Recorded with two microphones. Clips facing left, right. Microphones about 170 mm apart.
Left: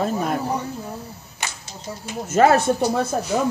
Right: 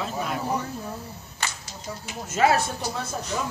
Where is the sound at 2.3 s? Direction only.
50° left (ahead or behind).